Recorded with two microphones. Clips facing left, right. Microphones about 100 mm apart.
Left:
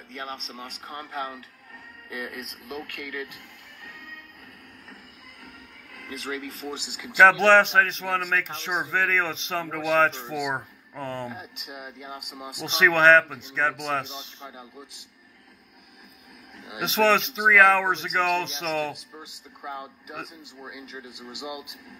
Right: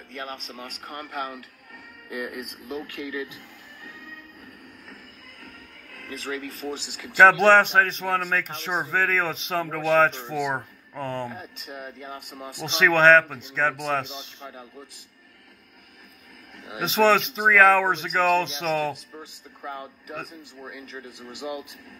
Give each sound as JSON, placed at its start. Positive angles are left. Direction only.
{"t": 0.2, "sound": "speech", "side_deg": 25}
{"t": 2.3, "sound": "speech", "side_deg": 65}
{"t": 3.8, "sound": "music", "side_deg": 55}
{"t": 6.3, "sound": "speech", "side_deg": -45}
{"t": 6.7, "sound": "speech", "side_deg": 15}
{"t": 7.2, "sound": "speech", "side_deg": -5}
{"t": 11.3, "sound": "speech", "side_deg": 15}
{"t": 12.6, "sound": "speech", "side_deg": 0}
{"t": 16.8, "sound": "speech", "side_deg": 0}
{"t": 19.1, "sound": "speech", "side_deg": 15}